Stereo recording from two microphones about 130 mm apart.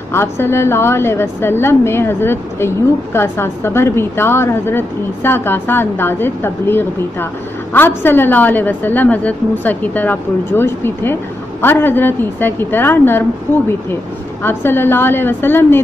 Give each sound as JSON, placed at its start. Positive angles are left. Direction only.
{"t": 0.1, "sound": "a woman's voice", "side_deg": 20}
{"t": 14.4, "sound": "a woman's voice", "side_deg": 15}